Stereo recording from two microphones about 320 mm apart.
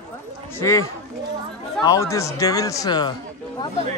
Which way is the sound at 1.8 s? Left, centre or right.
Centre.